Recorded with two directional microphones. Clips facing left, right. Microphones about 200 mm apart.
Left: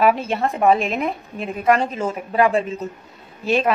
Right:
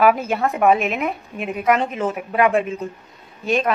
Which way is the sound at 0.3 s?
5° right (ahead or behind).